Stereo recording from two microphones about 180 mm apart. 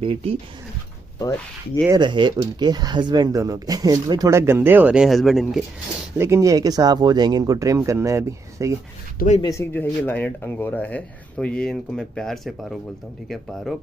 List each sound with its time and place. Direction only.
0.0 s speech: 30° right (ahead or behind)
1.9 s speech: 25° right (ahead or behind); by 5.6 s centre (ahead or behind)
6.1 s speech: 15° right (ahead or behind)
9.4 s speech: 15° left (ahead or behind); by 12.7 s centre (ahead or behind)